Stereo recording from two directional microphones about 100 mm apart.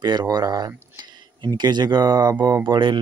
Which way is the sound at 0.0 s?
45° right (ahead or behind).